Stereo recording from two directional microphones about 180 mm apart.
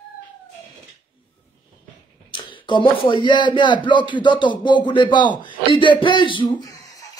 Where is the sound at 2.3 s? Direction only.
25° left (ahead or behind).